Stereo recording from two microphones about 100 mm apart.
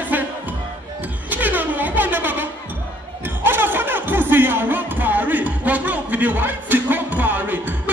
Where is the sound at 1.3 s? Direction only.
15° right (ahead or behind).